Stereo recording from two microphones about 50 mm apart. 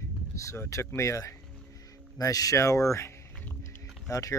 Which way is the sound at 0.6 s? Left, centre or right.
Left.